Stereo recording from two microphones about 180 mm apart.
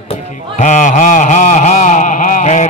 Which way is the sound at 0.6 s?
45° left (ahead or behind).